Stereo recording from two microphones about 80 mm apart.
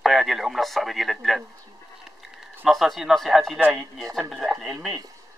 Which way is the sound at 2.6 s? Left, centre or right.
Centre.